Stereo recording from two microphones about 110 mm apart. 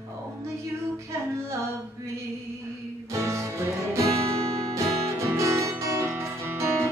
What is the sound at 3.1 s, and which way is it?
Music, 25° right (ahead or behind).